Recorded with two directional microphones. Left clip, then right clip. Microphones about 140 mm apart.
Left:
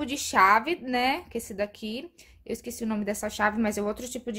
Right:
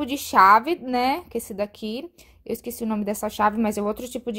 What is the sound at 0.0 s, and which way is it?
A woman's voice, 30° right (ahead or behind).